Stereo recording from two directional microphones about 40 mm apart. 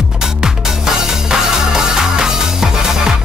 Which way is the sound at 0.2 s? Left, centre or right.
Centre.